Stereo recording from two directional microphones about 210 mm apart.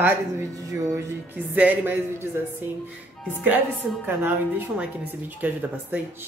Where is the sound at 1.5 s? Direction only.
10° right (ahead or behind).